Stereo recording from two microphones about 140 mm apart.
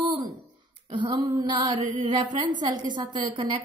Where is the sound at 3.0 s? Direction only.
35° right (ahead or behind).